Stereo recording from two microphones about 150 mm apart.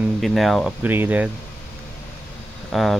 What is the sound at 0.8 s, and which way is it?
Speech, 15° right (ahead or behind).